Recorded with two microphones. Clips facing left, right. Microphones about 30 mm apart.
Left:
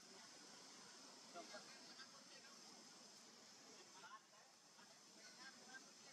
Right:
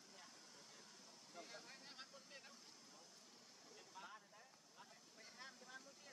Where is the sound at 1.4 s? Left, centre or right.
Centre.